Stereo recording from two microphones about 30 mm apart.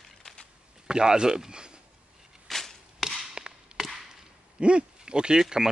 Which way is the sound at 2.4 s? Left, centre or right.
Centre.